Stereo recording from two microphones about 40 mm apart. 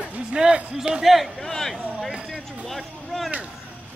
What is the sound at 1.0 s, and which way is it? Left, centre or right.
Speech, centre.